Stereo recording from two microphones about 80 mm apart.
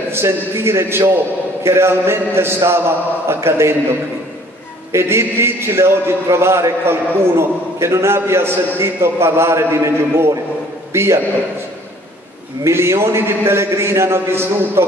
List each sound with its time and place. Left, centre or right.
0.1 s a man's voice: right
4.9 s a man's voice: right
12.6 s a man's voice: right